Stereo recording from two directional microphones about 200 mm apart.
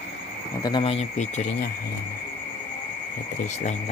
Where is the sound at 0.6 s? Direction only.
20° left (ahead or behind).